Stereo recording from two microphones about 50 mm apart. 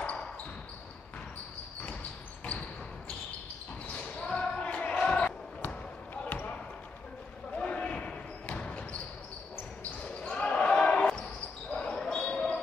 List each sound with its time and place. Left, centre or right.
3.9 s basketball bounce: left
6.2 s basketball bounce: left
7.5 s basketball bounce: left
10.2 s basketball bounce: left